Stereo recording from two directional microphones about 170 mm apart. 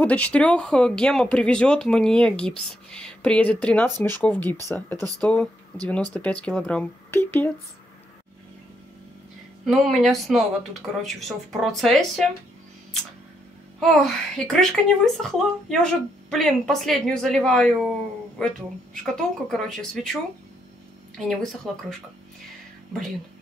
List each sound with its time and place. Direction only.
0.0 s speech: 10° left (ahead or behind)
4.9 s speech: 20° right (ahead or behind)
5.2 s speech: 10° left (ahead or behind)
9.7 s speech: centre (ahead or behind)
13.7 s speech: centre (ahead or behind)
21.7 s speech: centre (ahead or behind)